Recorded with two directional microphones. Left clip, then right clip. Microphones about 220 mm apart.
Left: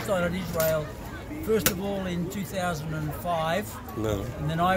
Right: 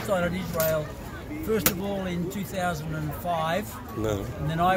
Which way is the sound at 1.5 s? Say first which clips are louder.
Left 1 dB; 10° left (ahead or behind).